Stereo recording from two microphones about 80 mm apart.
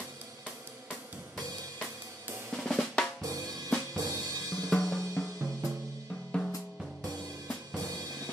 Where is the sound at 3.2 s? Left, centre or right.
Right.